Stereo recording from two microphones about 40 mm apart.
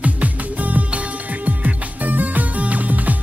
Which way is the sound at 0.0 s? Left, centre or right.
Right.